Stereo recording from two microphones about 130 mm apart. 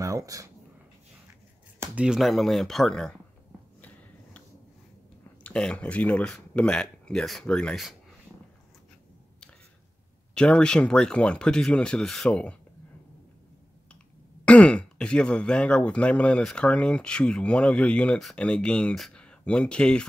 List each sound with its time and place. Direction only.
0.0 s a sound: 25° right (ahead or behind)
1.8 s speech: 10° right (ahead or behind)
5.4 s speech: 10° left (ahead or behind)
10.3 s speech: 10° left (ahead or behind)
14.4 s speech: 10° left (ahead or behind)